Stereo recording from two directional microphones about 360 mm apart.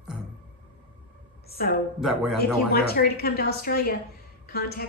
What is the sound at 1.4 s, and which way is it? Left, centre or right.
Speech, left.